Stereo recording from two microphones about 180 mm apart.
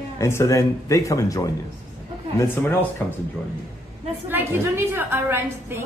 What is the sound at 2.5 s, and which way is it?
Speech, 10° left (ahead or behind).